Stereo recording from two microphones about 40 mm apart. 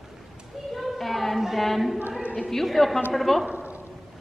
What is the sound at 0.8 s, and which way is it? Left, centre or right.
A woman's voice, centre.